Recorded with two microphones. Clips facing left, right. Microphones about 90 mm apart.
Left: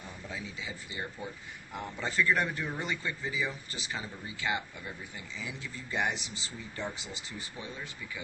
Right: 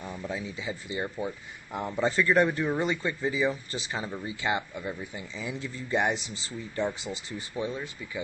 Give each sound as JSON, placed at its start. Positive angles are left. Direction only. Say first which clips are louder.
{"t": 0.3, "sound": "speech", "louder": "right 5 dB", "side_deg": -35}
{"t": 2.2, "sound": "speech", "louder": "right 7 dB", "side_deg": -45}
{"t": 4.4, "sound": "speech", "louder": "right 3 dB", "side_deg": -30}
{"t": 5.4, "sound": "speech", "louder": "right 7 dB", "side_deg": -40}
{"t": 7.3, "sound": "speech", "louder": "right 10 dB", "side_deg": -25}